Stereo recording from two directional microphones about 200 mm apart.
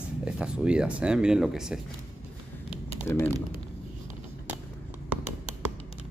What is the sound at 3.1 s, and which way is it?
Speech, 10° left (ahead or behind).